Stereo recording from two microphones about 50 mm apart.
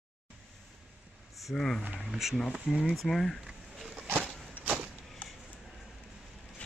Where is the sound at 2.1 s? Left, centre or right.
Centre.